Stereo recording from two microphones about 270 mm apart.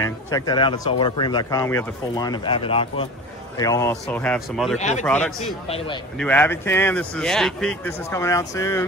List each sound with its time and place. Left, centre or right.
0.0 s speech: centre
4.7 s a man's voice: left
5.0 s speech: centre